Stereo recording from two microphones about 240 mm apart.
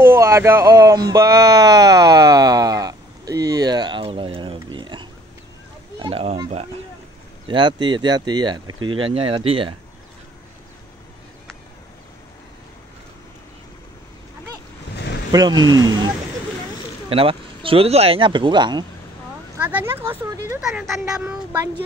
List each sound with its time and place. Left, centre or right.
0.0 s a sound: centre
7.4 s speech: centre
15.3 s speech: centre
17.1 s speech: right
20.6 s speech: centre